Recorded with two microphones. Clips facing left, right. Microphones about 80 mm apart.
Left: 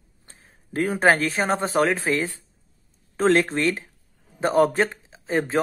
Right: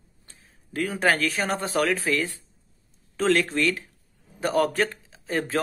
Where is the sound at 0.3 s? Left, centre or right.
Left.